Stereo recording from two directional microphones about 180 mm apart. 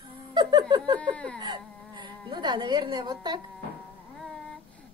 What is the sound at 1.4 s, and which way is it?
A woman's voice, 25° right (ahead or behind).